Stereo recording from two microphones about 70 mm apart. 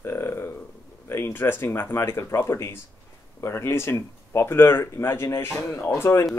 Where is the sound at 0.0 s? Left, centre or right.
Left.